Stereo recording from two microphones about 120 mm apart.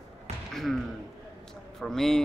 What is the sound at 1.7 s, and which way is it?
Speech, 5° left (ahead or behind).